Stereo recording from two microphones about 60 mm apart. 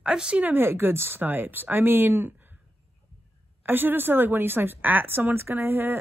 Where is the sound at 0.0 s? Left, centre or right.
Centre.